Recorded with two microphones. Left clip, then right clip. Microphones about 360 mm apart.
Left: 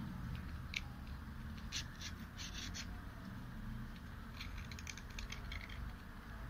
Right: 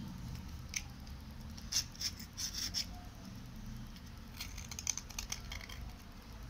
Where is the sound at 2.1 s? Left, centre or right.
Right.